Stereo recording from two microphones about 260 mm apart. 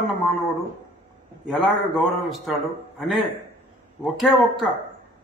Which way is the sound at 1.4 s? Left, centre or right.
Centre.